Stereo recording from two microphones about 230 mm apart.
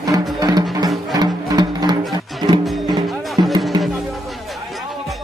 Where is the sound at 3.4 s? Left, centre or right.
Centre.